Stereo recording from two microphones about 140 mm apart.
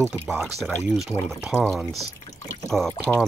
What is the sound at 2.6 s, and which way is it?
Speech, 5° left (ahead or behind).